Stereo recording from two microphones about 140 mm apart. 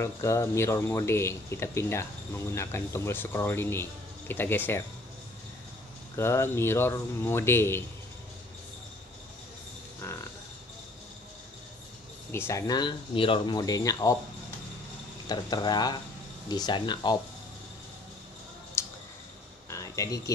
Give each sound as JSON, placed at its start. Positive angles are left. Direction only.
{"t": 0.0, "sound": "speech", "side_deg": 20}
{"t": 6.1, "sound": "a man's voice", "side_deg": 20}
{"t": 10.0, "sound": "a man's voice", "side_deg": 15}
{"t": 12.3, "sound": "speech", "side_deg": 15}
{"t": 15.2, "sound": "speech", "side_deg": 30}
{"t": 18.8, "sound": "scissors", "side_deg": 20}
{"t": 19.7, "sound": "a sound", "side_deg": 25}